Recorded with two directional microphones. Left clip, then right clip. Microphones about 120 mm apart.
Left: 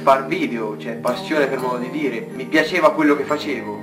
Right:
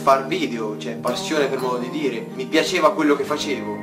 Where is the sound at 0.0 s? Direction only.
20° right (ahead or behind).